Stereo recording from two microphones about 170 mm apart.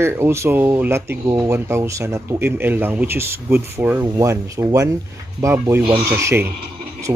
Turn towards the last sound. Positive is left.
turn(degrees=-20)  # may be behind; listen again after turning